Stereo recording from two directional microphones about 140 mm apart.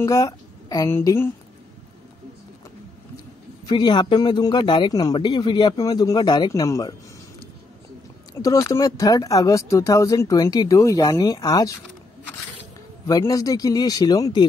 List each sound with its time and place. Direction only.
0.0 s a woman's voice: 25° left (ahead or behind)
3.6 s a man's voice: 30° left (ahead or behind)
8.4 s speech: 25° left (ahead or behind)
13.0 s speech: 25° left (ahead or behind)